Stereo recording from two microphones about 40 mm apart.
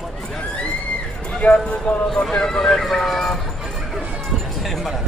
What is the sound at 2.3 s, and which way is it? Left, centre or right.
Speech, centre.